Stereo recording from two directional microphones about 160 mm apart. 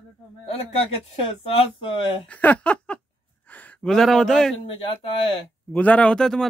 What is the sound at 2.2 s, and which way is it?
Speech, 10° left (ahead or behind).